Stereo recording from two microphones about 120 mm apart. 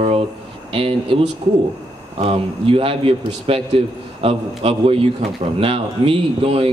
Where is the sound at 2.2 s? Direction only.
50° right (ahead or behind).